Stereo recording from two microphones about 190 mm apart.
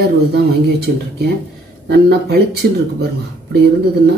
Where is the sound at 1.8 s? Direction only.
60° right (ahead or behind).